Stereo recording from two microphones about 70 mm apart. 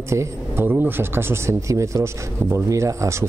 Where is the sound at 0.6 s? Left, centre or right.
Right.